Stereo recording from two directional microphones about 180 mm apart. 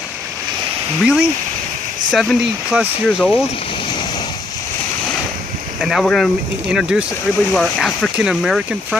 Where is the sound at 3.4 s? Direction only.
30° left (ahead or behind).